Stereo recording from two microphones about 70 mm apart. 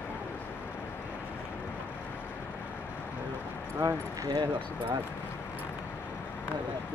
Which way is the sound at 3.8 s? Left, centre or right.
Right.